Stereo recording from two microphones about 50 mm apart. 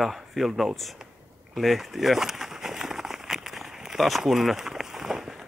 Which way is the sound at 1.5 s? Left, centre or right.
Centre.